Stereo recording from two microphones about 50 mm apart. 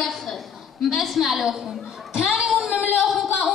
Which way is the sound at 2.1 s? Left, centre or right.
Centre.